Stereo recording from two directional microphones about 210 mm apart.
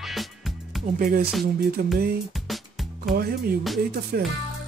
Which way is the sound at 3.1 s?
45° right (ahead or behind).